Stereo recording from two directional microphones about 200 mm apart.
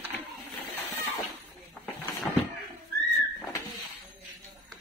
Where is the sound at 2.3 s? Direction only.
5° left (ahead or behind).